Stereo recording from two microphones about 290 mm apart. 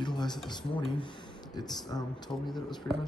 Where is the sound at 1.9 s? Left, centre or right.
Centre.